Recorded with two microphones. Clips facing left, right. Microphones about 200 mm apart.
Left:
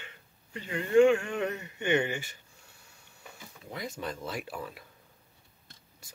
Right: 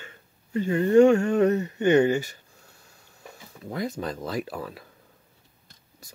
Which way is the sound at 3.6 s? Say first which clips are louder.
Right 7 dB; 40° right (ahead or behind).